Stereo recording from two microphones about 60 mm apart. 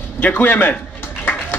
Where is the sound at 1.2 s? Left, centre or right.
Left.